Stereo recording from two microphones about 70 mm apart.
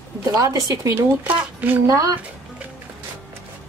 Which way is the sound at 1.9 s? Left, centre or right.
Right.